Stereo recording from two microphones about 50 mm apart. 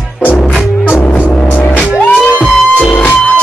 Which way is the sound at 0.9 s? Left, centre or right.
Left.